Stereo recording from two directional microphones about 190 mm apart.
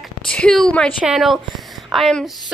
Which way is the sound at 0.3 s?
5° left (ahead or behind).